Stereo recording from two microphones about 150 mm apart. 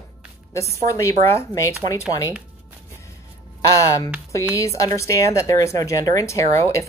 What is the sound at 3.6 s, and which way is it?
A woman's voice, 20° left (ahead or behind).